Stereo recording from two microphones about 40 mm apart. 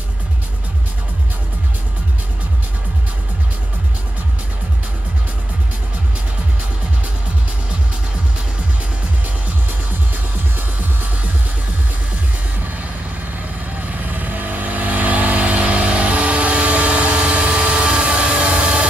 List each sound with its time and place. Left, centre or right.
13.9 s vehicle: right